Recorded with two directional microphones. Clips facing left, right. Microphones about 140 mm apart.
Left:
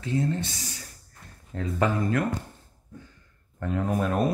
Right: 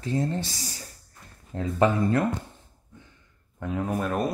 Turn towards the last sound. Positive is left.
turn(degrees=0)  # may be behind; listen again after turning